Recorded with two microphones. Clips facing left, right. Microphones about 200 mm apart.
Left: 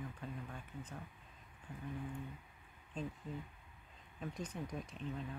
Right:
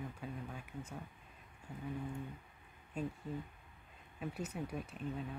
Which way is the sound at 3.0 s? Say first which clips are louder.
Right 3 dB; 10° right (ahead or behind).